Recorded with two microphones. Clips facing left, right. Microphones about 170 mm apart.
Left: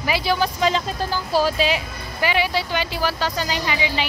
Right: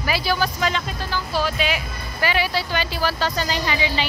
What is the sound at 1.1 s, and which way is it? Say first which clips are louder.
Speech: left 3 dB; 40° left (ahead or behind).